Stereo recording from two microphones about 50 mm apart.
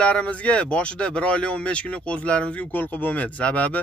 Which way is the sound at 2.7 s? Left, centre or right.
Left.